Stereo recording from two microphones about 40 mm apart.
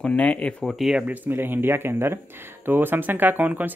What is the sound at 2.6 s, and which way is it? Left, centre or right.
Speech, right.